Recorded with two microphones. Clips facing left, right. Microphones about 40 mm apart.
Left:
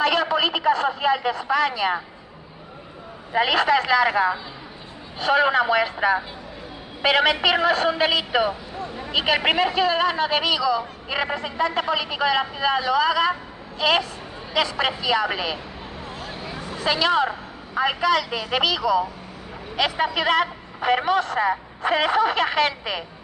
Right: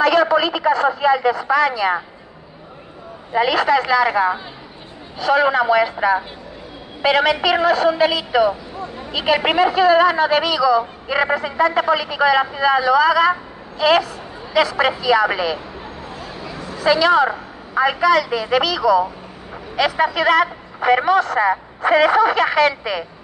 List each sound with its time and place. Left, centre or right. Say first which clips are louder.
0.0 s a man's voice: right 6 dB; centre
3.3 s a man's voice: right 3 dB; centre
16.5 s a sound: right 2 dB; centre
16.8 s a man's voice: right 6 dB; centre